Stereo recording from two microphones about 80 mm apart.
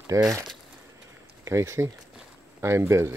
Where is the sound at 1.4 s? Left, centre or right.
Right.